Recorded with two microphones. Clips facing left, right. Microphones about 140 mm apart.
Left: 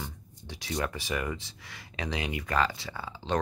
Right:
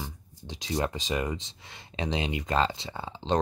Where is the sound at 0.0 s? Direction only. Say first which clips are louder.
Right 1 dB; 20° right (ahead or behind).